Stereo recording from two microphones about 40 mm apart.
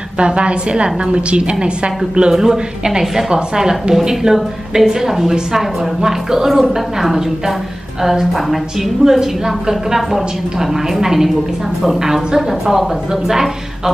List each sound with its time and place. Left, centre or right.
0.2 s a woman's voice: right; by 13.9 s centre